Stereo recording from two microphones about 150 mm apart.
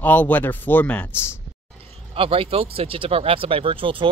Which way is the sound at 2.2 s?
40° right (ahead or behind).